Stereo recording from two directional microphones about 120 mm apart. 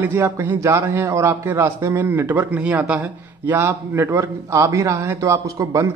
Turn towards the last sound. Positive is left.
turn(degrees=-25)  # may be behind; listen again after turning